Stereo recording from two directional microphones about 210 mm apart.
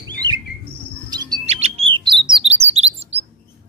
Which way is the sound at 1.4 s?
30° right (ahead or behind).